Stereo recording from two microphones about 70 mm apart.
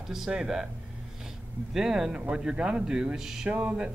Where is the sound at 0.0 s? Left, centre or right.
Centre.